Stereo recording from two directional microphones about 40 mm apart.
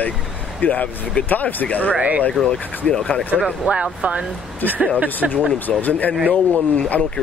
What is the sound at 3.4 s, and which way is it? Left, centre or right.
Speech, right.